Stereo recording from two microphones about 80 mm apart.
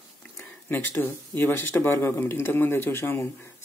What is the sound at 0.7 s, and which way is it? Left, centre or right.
Speech, left.